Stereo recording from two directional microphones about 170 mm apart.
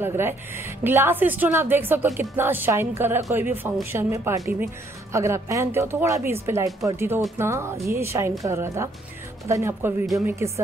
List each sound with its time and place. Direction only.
0.0 s speech: 15° right (ahead or behind)